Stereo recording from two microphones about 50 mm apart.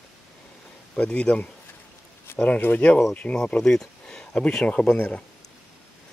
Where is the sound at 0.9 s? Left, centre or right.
Left.